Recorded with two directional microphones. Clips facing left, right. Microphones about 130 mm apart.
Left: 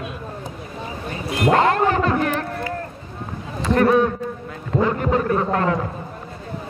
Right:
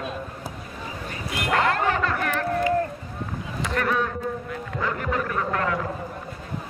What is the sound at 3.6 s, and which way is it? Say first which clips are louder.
A man's voice: left 9 dB; 30° left (ahead or behind).